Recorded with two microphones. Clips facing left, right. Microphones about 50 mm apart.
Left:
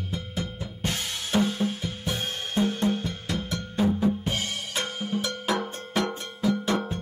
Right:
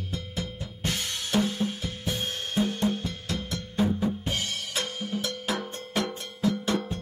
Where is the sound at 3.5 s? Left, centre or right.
Centre.